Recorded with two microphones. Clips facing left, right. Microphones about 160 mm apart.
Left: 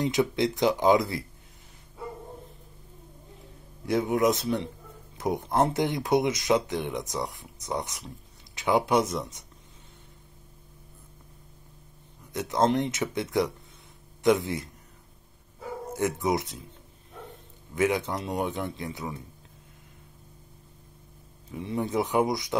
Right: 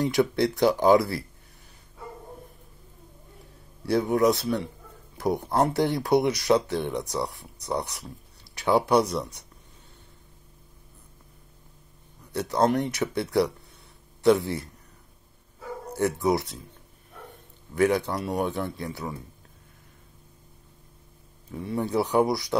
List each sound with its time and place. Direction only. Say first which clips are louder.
0.0 s speech: right 2 dB; 20° left (ahead or behind)
3.8 s speech: right 2 dB; 20° left (ahead or behind)
12.3 s a man's voice: right 1 dB; 20° left (ahead or behind)
15.9 s speech: right 3 dB; 20° left (ahead or behind)
17.7 s a man's voice: right 3 dB; 20° left (ahead or behind)
21.7 s speech: right 2 dB; 20° left (ahead or behind)